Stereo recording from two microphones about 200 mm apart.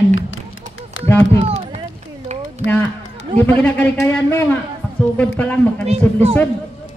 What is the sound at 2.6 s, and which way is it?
Speech, 75° left (ahead or behind).